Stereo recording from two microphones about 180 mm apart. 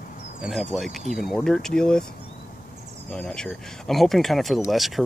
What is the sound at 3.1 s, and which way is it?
Speech, 5° left (ahead or behind).